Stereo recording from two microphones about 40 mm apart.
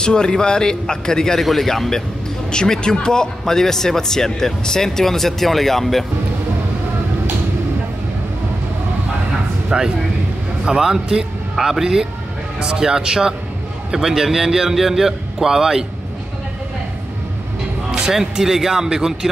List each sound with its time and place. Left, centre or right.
0.0 s a man's voice: centre
1.4 s a man's voice: centre
9.7 s a man's voice: centre
17.9 s a man's voice: centre